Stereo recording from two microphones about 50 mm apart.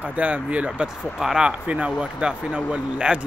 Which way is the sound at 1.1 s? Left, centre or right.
Centre.